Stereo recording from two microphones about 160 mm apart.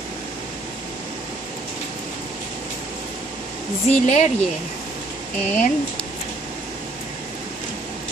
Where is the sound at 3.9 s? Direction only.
50° left (ahead or behind).